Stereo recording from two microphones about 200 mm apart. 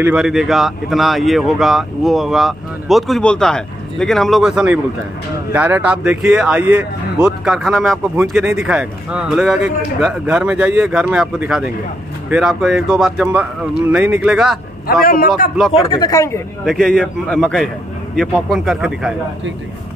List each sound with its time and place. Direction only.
0.0 s speech: 5° right (ahead or behind)
15.0 s a man's voice: 45° left (ahead or behind)
15.9 s speech: 20° left (ahead or behind)
16.6 s speech: centre (ahead or behind)